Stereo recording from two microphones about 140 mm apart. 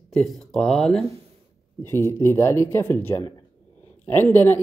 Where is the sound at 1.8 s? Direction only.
15° left (ahead or behind).